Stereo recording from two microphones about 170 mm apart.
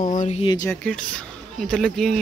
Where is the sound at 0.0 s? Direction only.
50° left (ahead or behind).